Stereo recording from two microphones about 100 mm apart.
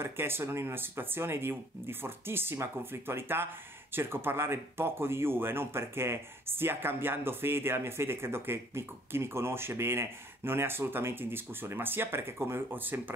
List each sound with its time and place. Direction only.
0.0 s speech: 25° right (ahead or behind)